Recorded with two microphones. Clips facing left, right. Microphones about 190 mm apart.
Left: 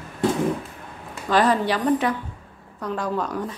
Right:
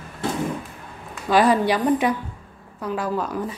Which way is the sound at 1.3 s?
10° right (ahead or behind).